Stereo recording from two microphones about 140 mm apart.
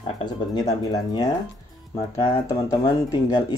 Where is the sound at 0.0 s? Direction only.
30° left (ahead or behind).